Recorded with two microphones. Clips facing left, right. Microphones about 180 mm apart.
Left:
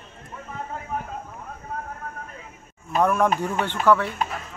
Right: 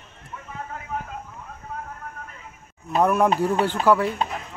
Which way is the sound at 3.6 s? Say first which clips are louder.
Right 3 dB; 35° right (ahead or behind).